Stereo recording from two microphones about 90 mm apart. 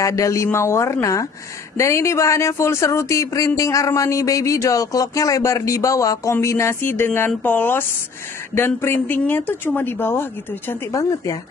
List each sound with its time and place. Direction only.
0.0 s speech: 35° left (ahead or behind)
10.9 s speech: 40° left (ahead or behind)